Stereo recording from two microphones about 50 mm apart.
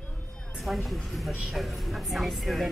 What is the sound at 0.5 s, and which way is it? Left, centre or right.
Speech, centre.